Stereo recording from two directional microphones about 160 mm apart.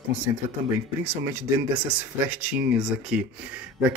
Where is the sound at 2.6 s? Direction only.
5° right (ahead or behind).